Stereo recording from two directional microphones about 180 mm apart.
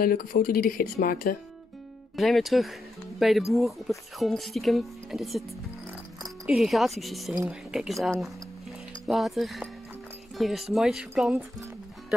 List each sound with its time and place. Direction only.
0.0 s speech: 55° left (ahead or behind)
2.1 s speech: centre (ahead or behind)